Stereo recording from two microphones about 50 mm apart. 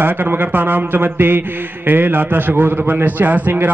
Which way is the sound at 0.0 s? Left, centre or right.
Right.